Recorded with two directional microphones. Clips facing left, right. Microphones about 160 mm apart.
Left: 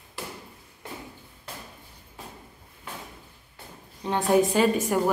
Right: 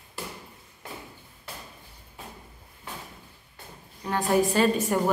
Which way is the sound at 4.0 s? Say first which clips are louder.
Left 2 dB; 20° left (ahead or behind).